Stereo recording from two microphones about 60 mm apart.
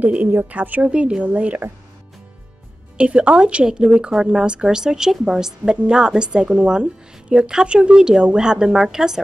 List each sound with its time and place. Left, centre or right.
0.0 s speech: right
3.0 s a woman's voice: right